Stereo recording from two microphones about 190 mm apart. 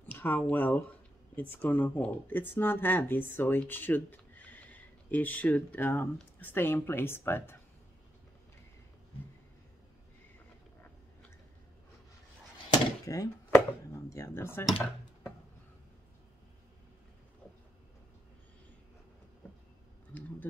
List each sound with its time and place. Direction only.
0.0 s speech: 10° left (ahead or behind)
12.7 s a sound: 20° left (ahead or behind)
14.0 s speech: 15° left (ahead or behind)